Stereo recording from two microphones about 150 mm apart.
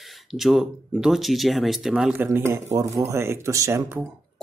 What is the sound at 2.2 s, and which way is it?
Speech, 20° right (ahead or behind).